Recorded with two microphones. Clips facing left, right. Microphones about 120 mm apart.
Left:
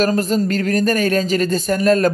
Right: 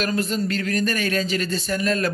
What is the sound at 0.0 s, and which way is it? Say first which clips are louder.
Speech: left 7 dB; 40° left (ahead or behind).